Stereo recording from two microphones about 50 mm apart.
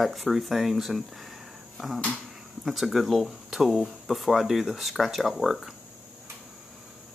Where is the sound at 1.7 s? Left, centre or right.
Centre.